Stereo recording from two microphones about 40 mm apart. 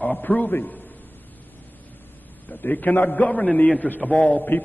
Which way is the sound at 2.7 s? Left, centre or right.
Left.